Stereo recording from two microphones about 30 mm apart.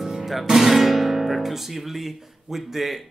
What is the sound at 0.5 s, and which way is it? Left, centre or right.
Speech, centre.